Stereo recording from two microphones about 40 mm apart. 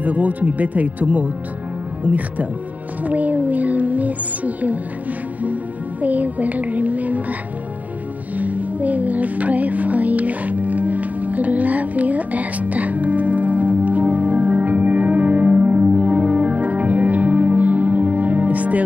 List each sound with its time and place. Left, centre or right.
0.0 s speech: right
3.0 s music: right
8.4 s music: right